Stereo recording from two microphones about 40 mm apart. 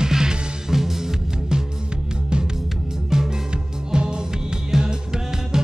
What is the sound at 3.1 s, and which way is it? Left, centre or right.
Music, centre.